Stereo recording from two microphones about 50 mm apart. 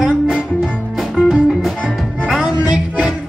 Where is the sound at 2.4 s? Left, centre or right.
Centre.